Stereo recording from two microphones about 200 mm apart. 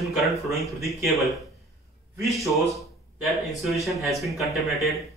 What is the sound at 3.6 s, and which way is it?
Speech, centre (ahead or behind).